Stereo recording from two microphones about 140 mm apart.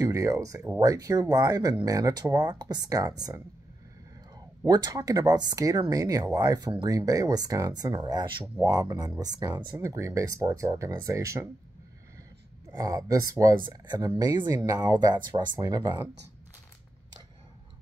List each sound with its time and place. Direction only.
0.0 s speech: 25° right (ahead or behind)
4.6 s speech: 30° right (ahead or behind)
12.7 s speech: 25° right (ahead or behind)